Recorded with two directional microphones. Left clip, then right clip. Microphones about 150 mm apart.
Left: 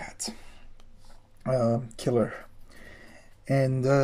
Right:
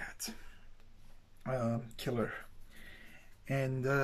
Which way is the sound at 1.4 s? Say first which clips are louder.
Left 11 dB; 35° left (ahead or behind).